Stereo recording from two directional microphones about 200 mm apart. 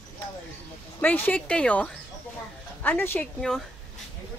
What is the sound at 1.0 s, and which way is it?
Speech, 10° left (ahead or behind).